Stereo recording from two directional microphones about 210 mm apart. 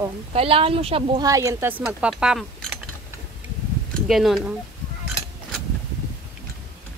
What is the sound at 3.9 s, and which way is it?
Speech, centre (ahead or behind).